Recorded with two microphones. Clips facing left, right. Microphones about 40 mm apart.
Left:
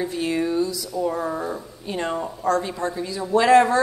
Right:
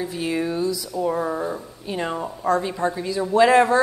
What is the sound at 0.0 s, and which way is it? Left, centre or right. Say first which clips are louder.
A woman's voice: left 1 dB; centre.